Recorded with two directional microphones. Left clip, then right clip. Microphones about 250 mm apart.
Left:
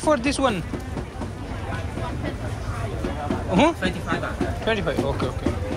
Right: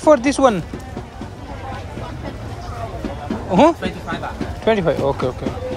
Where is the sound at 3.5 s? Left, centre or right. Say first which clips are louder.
Right 7 dB; right.